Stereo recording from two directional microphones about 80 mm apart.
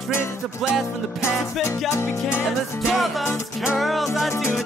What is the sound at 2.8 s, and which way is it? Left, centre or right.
Music, centre.